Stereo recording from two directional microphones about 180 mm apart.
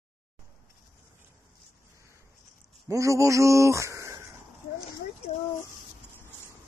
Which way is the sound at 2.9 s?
15° right (ahead or behind).